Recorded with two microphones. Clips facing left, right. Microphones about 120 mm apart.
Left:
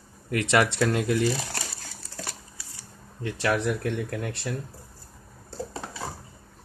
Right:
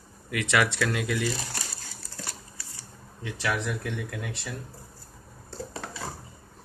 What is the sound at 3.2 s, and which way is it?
Speech, 50° left (ahead or behind).